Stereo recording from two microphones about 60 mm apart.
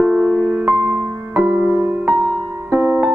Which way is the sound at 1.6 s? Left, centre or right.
Centre.